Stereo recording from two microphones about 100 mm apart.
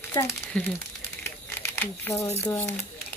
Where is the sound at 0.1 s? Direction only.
30° left (ahead or behind).